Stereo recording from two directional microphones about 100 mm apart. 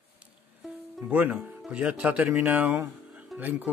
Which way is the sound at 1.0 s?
15° right (ahead or behind).